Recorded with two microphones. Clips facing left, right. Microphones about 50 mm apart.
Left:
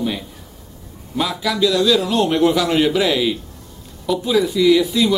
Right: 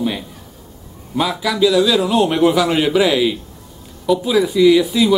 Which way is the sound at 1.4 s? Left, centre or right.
Centre.